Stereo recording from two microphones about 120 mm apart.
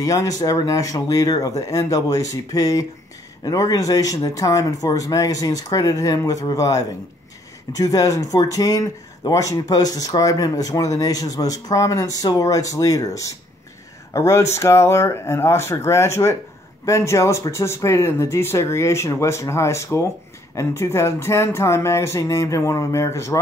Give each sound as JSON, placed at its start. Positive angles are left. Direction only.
{"t": 0.0, "sound": "speech", "side_deg": 30}